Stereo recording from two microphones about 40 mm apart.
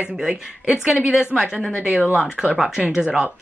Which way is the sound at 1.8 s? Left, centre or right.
Right.